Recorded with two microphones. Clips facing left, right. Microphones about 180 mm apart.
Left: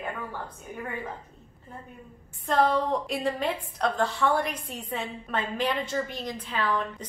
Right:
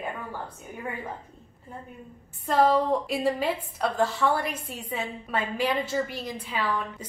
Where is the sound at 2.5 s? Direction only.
5° right (ahead or behind).